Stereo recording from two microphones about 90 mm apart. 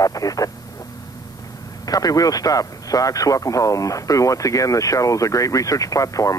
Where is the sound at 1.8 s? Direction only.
45° left (ahead or behind).